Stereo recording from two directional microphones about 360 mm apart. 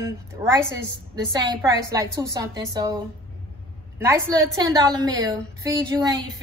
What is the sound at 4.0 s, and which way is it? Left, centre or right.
A woman's voice, centre.